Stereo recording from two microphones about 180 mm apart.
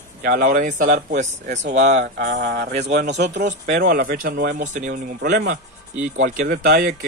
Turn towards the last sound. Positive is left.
turn(degrees=-60)  # may be behind; listen again after turning